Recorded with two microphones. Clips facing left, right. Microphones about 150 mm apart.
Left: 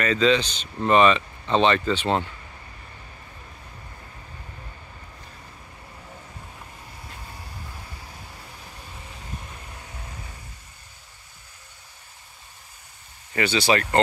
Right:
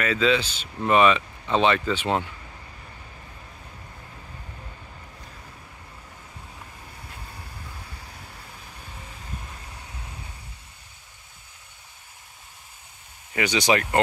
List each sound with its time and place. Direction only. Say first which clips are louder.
0.0 s speech: left 2 dB; 5° right (ahead or behind)
13.3 s speech: left 1 dB; 15° right (ahead or behind)